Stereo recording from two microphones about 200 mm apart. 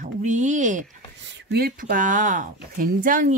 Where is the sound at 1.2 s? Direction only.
60° right (ahead or behind).